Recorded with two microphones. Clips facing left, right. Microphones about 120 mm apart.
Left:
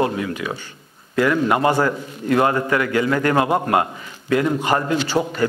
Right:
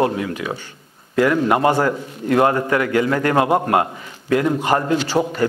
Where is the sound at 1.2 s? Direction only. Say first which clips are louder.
Right 2 dB; 35° right (ahead or behind).